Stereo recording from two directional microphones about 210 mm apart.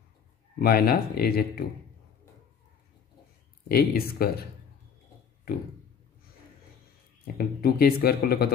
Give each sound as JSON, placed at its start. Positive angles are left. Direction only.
{"t": 0.6, "sound": "speech", "side_deg": 45}
{"t": 3.6, "sound": "speech", "side_deg": 45}
{"t": 7.3, "sound": "speech", "side_deg": 45}